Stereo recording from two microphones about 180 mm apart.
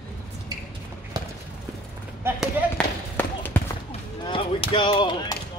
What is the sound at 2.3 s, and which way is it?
Basketball bounce, 10° left (ahead or behind).